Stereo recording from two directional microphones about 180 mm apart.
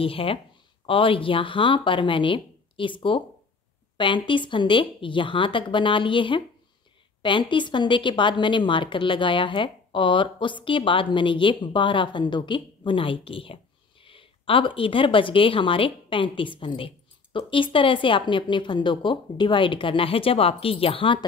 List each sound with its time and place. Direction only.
0.0 s speech: 30° left (ahead or behind)